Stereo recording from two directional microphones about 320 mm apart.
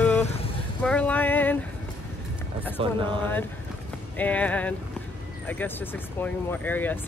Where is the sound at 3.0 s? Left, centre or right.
Centre.